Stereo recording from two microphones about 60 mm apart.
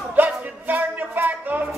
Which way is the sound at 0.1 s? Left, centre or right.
Right.